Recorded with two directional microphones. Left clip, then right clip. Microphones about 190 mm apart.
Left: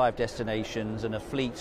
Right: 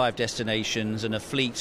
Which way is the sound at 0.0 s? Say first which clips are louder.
Right 1 dB; 15° left (ahead or behind).